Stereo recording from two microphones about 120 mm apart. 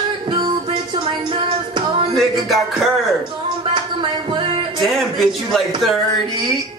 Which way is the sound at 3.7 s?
40° right (ahead or behind).